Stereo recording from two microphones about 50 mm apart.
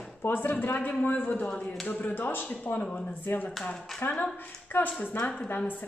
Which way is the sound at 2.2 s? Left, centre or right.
Left.